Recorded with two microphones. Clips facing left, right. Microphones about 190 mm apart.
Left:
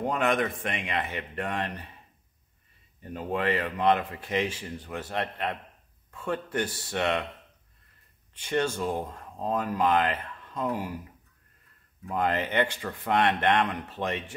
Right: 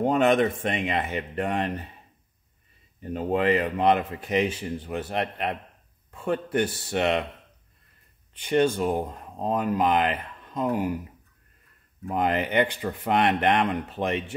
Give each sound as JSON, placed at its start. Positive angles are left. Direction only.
{"t": 0.0, "sound": "speech", "side_deg": -25}
{"t": 3.0, "sound": "speech", "side_deg": -20}
{"t": 8.4, "sound": "speech", "side_deg": -20}
{"t": 12.1, "sound": "speech", "side_deg": -15}